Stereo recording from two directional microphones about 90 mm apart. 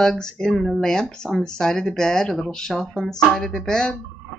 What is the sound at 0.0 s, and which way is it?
Speech, 5° left (ahead or behind).